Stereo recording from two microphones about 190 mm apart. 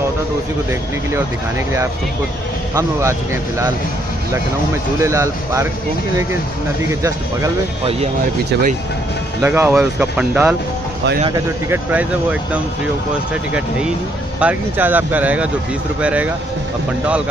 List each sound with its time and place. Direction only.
2.7 s speech: 15° right (ahead or behind)
5.0 s speech: 15° right (ahead or behind)
6.9 s speech: 15° right (ahead or behind)
9.4 s speech: 10° right (ahead or behind)
11.2 s speech: 20° right (ahead or behind)
11.9 s speech: 10° right (ahead or behind)